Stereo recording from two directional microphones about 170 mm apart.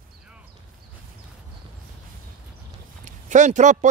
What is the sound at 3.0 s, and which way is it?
Speech, 45° right (ahead or behind).